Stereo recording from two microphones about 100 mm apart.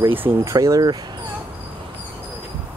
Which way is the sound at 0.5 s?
35° right (ahead or behind).